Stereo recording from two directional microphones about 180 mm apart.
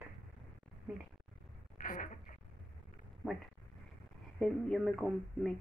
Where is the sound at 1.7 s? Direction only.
50° left (ahead or behind).